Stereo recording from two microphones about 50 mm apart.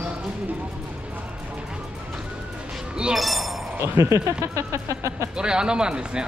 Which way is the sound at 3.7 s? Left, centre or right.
Right.